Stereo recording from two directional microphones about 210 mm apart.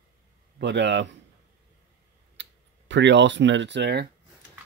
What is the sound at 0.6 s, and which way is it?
Speech, 55° right (ahead or behind).